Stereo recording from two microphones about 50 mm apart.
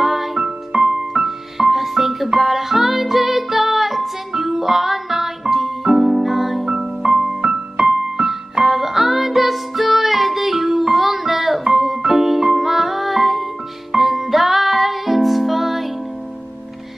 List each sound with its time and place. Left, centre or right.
0.0 s music: centre
6.7 s piano: centre
13.9 s music: centre